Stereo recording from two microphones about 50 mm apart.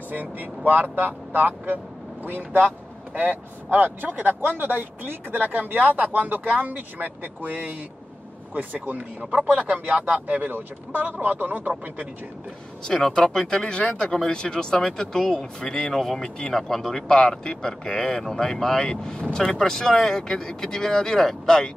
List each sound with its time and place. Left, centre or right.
0.1 s speech: right
9.4 s speech: right
12.8 s speech: centre